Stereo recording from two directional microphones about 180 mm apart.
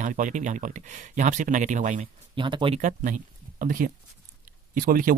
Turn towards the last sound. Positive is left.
turn(degrees=-50)  # may be behind; listen again after turning